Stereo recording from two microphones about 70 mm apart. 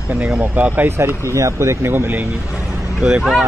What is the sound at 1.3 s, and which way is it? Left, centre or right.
Speech, right.